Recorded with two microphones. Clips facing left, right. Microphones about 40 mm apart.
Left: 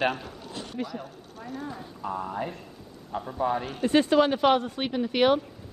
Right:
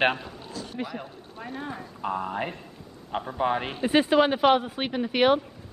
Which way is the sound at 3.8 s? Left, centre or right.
Centre.